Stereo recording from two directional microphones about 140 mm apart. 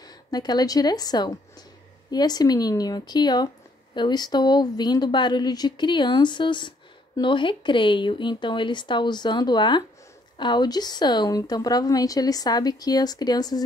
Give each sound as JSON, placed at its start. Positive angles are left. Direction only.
{"t": 0.0, "sound": "a woman's voice", "side_deg": 30}